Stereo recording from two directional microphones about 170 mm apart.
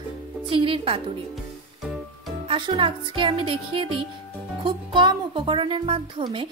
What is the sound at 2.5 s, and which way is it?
Speech, 30° right (ahead or behind).